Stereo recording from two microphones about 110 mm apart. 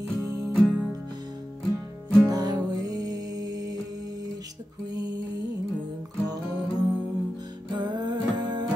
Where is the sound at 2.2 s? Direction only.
35° right (ahead or behind).